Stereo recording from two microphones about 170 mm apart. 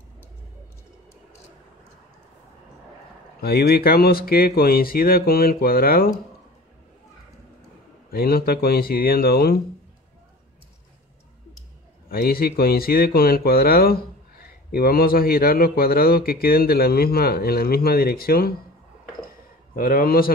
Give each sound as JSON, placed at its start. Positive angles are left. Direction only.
{"t": 3.3, "sound": "speech", "side_deg": 65}
{"t": 8.1, "sound": "speech", "side_deg": 65}
{"t": 12.1, "sound": "speech", "side_deg": 65}
{"t": 19.7, "sound": "speech", "side_deg": 55}